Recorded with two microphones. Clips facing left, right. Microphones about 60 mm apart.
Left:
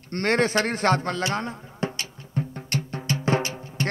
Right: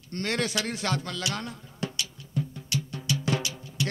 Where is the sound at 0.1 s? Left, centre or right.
Left.